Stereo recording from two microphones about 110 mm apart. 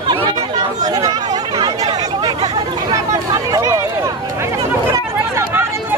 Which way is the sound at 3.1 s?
30° right (ahead or behind).